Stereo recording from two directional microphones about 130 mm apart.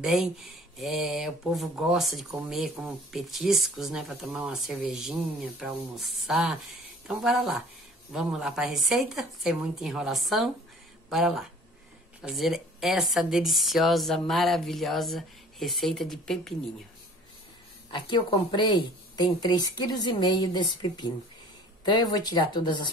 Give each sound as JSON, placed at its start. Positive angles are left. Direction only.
{"t": 0.0, "sound": "speech", "side_deg": -5}
{"t": 17.9, "sound": "speech", "side_deg": 35}